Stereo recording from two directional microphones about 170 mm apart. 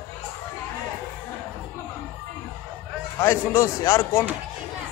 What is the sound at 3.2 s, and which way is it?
Speech, 15° left (ahead or behind).